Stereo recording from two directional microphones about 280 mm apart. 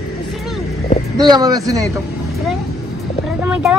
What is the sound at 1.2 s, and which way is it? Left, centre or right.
Speech, centre.